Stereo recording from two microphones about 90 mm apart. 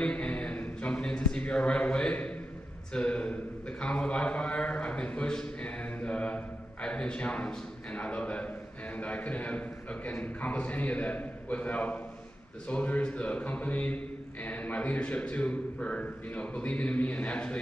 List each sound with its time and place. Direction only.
0.0 s a man's voice: 15° left (ahead or behind)